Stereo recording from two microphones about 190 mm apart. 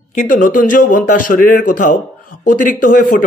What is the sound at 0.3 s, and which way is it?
A man's voice, 45° left (ahead or behind).